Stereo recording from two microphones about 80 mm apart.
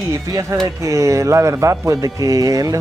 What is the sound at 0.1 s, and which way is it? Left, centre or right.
A man's voice, right.